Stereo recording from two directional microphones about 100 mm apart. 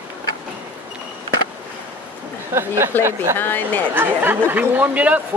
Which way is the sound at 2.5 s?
25° right (ahead or behind).